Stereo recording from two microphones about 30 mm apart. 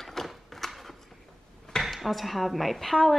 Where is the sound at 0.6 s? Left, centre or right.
Centre.